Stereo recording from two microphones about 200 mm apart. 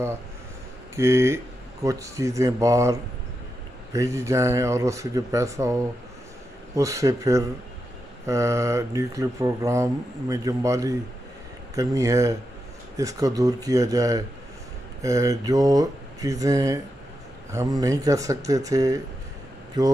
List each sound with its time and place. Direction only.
0.9 s speech: 15° right (ahead or behind)